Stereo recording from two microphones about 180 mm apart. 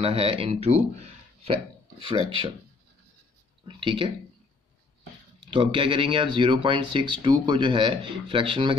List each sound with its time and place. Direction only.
0.0 s speech: 30° right (ahead or behind)
3.6 s speech: 30° right (ahead or behind)
5.5 s speech: 30° right (ahead or behind)